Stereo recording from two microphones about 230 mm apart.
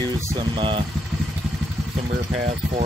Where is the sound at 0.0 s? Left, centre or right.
Centre.